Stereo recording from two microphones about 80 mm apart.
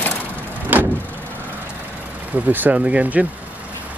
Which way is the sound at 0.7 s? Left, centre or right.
Right.